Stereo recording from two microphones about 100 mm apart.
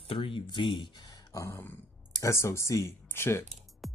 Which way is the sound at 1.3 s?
25° left (ahead or behind).